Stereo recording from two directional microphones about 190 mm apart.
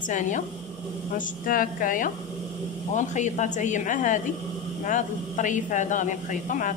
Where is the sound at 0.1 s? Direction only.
40° left (ahead or behind).